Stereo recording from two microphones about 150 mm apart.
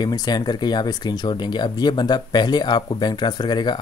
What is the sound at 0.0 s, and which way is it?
Speech, 25° left (ahead or behind).